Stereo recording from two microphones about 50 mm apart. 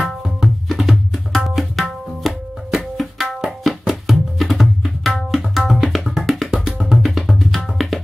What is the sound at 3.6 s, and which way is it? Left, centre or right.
Tabla, centre.